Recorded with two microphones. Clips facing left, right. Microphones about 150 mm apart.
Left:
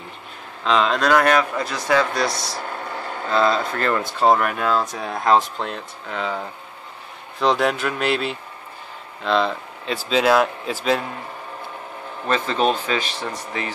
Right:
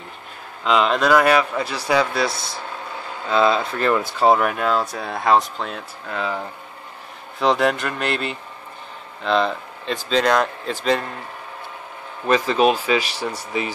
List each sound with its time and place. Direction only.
0.7 s speech: 10° right (ahead or behind)
1.6 s speech: 30° right (ahead or behind)
1.9 s speech: 10° right (ahead or behind)
12.3 s speech: 10° right (ahead or behind)